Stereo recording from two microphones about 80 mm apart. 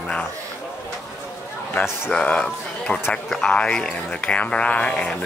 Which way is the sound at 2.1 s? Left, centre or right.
Centre.